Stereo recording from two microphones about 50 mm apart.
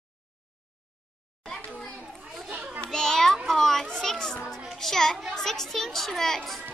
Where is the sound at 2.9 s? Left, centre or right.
Centre.